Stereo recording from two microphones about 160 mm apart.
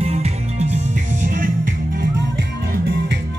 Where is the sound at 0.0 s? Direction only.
40° right (ahead or behind).